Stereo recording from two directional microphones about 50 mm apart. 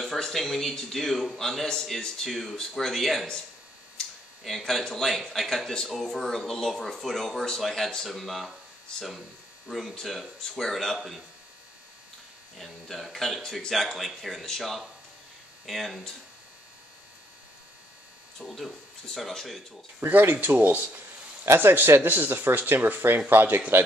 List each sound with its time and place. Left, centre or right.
0.0 s a man's voice: centre
4.5 s a man's voice: centre
9.7 s a man's voice: centre
12.5 s a man's voice: centre
18.4 s a man's voice: centre
20.1 s speech: right
21.5 s speech: right